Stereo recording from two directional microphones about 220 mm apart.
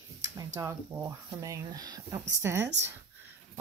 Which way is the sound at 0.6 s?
15° right (ahead or behind).